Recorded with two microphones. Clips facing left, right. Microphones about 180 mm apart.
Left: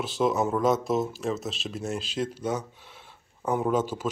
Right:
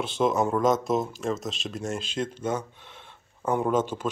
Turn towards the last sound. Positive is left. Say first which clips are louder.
# right 1 dB
turn(degrees=5)  # may be behind; listen again after turning